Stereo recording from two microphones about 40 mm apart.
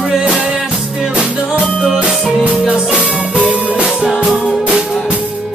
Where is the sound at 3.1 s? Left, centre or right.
Right.